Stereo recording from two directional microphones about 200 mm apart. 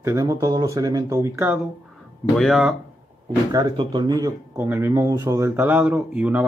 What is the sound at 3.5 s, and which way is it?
Speech, 20° right (ahead or behind).